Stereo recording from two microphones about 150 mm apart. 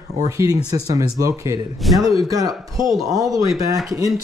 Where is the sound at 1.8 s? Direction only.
Centre (ahead or behind).